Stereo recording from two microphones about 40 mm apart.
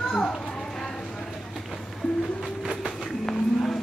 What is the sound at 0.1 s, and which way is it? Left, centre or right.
Children playing, centre.